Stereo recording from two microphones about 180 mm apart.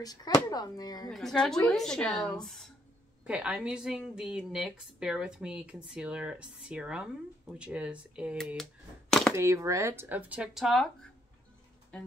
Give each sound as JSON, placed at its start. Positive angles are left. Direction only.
{"t": 0.0, "sound": "speech", "side_deg": 20}
{"t": 1.1, "sound": "a woman's voice", "side_deg": 5}
{"t": 9.3, "sound": "speech", "side_deg": -15}
{"t": 11.9, "sound": "a woman's voice", "side_deg": 5}